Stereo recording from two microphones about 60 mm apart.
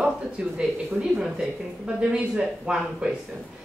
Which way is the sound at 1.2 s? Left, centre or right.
Centre.